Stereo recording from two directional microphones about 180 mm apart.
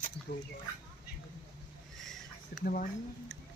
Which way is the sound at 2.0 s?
Centre (ahead or behind).